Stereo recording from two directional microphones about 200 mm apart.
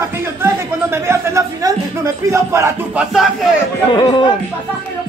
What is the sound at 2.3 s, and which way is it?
Speech, 15° right (ahead or behind).